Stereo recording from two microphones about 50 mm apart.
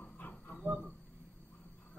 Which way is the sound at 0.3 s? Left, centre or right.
Centre.